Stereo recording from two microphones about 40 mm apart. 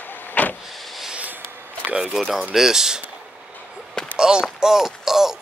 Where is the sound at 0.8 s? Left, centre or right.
Centre.